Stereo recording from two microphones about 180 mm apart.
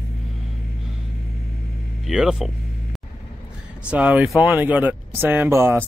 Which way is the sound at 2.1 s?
5° right (ahead or behind).